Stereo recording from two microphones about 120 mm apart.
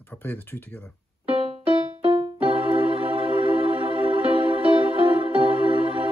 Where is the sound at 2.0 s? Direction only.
50° right (ahead or behind).